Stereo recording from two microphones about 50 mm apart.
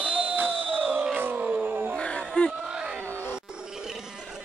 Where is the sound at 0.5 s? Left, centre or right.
Right.